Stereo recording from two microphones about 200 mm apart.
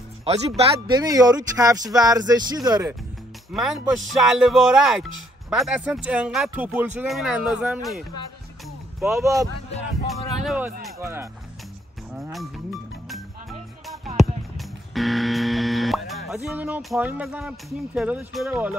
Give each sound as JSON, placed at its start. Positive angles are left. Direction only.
{"t": 0.2, "sound": "speech", "side_deg": -30}
{"t": 1.0, "sound": "speech", "side_deg": -20}
{"t": 3.5, "sound": "speech", "side_deg": 0}
{"t": 10.0, "sound": "speech", "side_deg": 0}
{"t": 13.1, "sound": "music", "side_deg": 0}
{"t": 14.6, "sound": "speech", "side_deg": 0}